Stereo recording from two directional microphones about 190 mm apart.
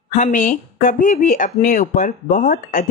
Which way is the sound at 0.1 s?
40° left (ahead or behind).